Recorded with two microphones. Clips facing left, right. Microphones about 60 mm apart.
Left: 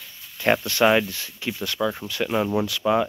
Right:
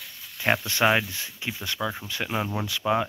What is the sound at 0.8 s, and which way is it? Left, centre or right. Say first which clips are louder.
Speech: left 4 dB; centre.